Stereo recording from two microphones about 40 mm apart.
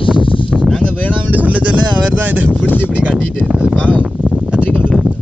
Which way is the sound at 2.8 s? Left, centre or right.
Right.